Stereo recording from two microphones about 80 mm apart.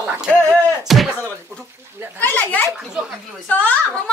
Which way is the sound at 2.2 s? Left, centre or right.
Left.